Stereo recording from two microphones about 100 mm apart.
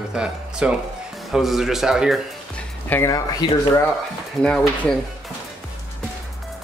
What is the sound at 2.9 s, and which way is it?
Speech, 15° left (ahead or behind).